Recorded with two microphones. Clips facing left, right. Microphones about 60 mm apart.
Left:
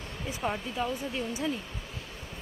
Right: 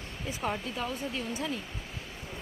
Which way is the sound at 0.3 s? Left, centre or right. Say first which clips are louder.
Left 1 dB; centre.